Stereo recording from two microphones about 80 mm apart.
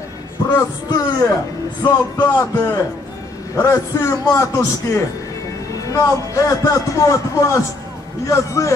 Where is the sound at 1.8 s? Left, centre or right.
Left.